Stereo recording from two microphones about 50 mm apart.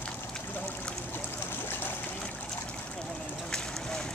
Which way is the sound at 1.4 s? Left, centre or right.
Left.